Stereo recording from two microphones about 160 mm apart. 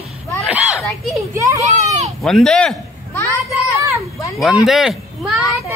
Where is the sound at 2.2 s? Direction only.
5° left (ahead or behind).